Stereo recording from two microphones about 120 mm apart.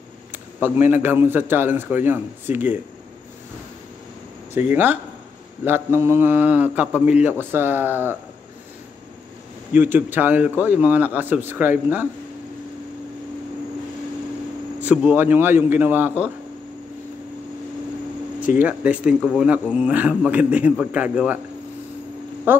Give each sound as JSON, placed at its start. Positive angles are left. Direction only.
{"t": 0.3, "sound": "a man's voice", "side_deg": -20}
{"t": 4.6, "sound": "a man's voice", "side_deg": -15}
{"t": 9.8, "sound": "a man's voice", "side_deg": -15}
{"t": 14.9, "sound": "a man's voice", "side_deg": -10}
{"t": 18.6, "sound": "a man's voice", "side_deg": -10}
{"t": 22.5, "sound": "a man's voice", "side_deg": -15}